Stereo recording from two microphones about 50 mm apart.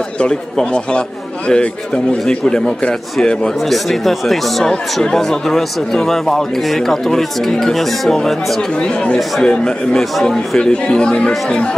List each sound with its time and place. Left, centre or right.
0.2 s a man's voice: centre
3.6 s speech: centre
8.7 s a man's voice: left
10.6 s speech: centre